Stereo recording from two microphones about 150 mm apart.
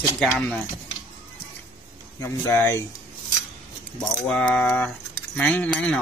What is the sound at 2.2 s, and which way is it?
Speech, 20° left (ahead or behind).